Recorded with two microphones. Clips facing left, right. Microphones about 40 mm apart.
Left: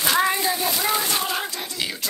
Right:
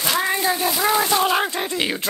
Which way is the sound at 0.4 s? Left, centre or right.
Centre.